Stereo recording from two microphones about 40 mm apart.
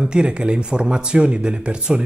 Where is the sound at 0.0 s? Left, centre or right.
Right.